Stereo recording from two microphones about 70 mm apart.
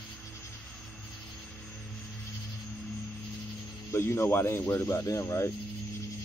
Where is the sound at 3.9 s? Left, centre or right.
Left.